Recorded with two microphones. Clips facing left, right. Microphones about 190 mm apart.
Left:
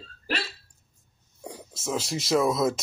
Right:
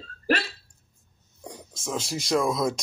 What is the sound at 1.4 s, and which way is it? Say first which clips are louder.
Speech: left 1 dB; 5° left (ahead or behind).